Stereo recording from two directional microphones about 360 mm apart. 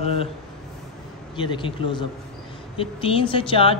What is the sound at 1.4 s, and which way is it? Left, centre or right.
A woman's voice, centre.